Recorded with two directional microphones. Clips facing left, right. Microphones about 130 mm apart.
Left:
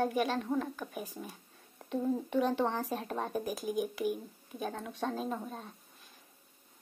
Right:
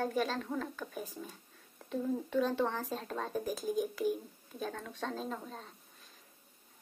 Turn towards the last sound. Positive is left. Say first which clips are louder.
# left 3 dB
turn(degrees=15)  # may be behind; listen again after turning